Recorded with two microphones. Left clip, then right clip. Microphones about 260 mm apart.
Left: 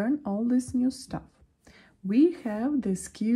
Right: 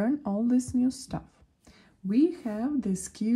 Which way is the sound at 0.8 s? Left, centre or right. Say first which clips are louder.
Even; right.